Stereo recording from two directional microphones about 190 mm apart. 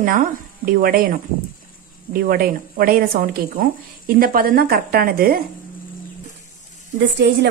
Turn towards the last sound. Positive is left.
turn(degrees=-65)  # may be behind; listen again after turning